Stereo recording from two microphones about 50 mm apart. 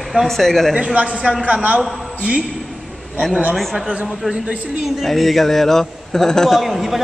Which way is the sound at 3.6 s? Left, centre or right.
Centre.